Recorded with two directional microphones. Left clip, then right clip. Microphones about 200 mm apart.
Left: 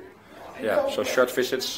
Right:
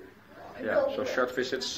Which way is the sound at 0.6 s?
50° left (ahead or behind).